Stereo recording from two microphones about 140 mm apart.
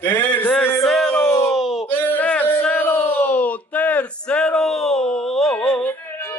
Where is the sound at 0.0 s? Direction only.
15° left (ahead or behind).